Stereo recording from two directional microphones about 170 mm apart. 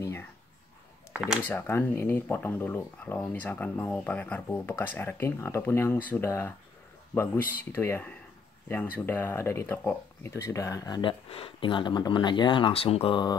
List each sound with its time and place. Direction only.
0.0 s a sound: 15° left (ahead or behind)
1.1 s speech: 5° right (ahead or behind)
1.4 s speech: 10° left (ahead or behind); by 13.4 s 25° left (ahead or behind)